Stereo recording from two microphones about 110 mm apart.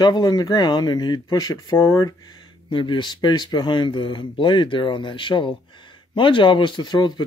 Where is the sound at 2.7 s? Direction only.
45° left (ahead or behind).